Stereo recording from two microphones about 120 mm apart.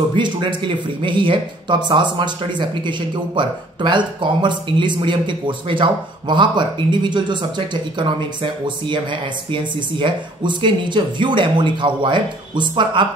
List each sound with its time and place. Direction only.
0.1 s speech: 40° right (ahead or behind)